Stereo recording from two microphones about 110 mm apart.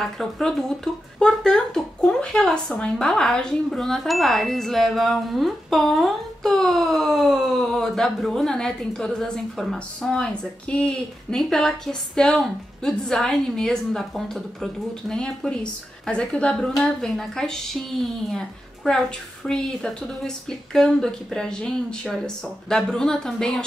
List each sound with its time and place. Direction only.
0.0 s speech: 5° left (ahead or behind)